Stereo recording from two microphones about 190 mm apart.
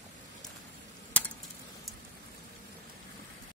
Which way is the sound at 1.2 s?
10° left (ahead or behind).